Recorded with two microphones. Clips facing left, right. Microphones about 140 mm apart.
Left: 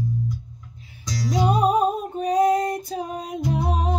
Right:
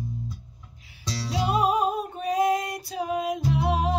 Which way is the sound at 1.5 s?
40° left (ahead or behind).